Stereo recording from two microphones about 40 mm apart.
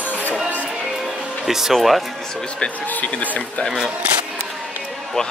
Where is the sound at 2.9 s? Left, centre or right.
Left.